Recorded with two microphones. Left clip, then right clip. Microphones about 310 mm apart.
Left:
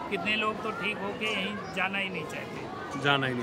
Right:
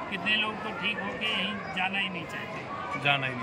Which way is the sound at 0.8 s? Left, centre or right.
Centre.